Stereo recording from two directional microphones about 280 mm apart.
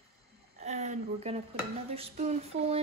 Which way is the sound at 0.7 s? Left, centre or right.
Right.